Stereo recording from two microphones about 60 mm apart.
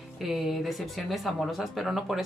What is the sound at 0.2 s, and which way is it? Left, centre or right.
Speech, centre.